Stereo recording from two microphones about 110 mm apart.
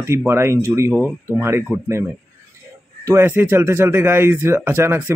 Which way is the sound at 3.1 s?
20° right (ahead or behind).